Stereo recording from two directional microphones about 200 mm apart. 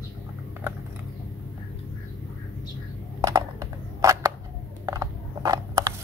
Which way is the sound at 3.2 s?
15° right (ahead or behind).